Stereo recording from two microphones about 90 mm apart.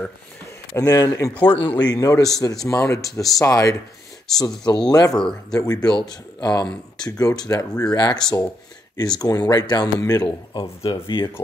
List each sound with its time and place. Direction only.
0.7 s speech: 40° left (ahead or behind)
1.3 s speech: 20° left (ahead or behind)
1.8 s speech: 45° left (ahead or behind)
4.4 s speech: 55° left (ahead or behind)
5.1 s speech: 5° left (ahead or behind)
5.6 s speech: 45° left (ahead or behind); by 11.2 s 65° left (ahead or behind)